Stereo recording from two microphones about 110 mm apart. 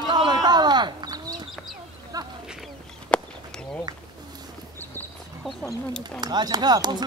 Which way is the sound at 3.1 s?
10° left (ahead or behind).